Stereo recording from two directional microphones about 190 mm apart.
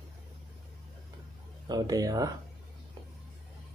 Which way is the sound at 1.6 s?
20° right (ahead or behind).